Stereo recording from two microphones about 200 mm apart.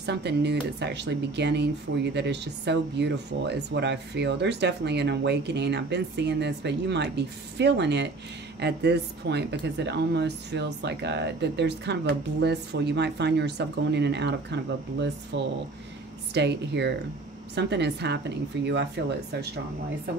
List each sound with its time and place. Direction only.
0.0 s speech: 55° right (ahead or behind)